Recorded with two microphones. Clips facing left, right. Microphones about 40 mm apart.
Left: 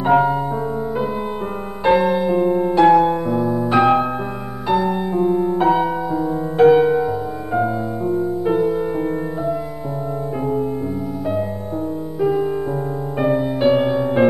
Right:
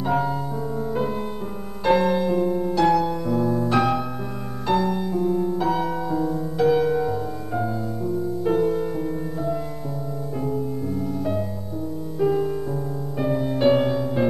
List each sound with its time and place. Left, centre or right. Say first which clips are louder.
0.0 s music: left 8 dB; left
1.9 s music: left 4 dB; centre; by 3.3 s left
3.3 s music: left 2 dB; centre
7.0 s music: left 4 dB; centre
7.6 s music: left 6 dB; left
8.5 s music: left 2 dB; centre
12.2 s music: left 3 dB; centre
13.2 s music: left 6 dB; left
13.6 s music: left 1 dB; centre
13.9 s music: left 6 dB; left